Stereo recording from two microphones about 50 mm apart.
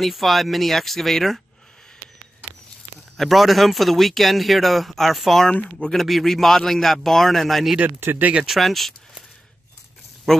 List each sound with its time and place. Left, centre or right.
0.0 s a man's voice: centre
3.2 s a man's voice: centre
5.5 s speech: left
5.9 s a man's voice: centre
10.3 s speech: centre